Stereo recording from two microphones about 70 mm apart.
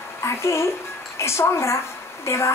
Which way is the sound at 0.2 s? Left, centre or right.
Left.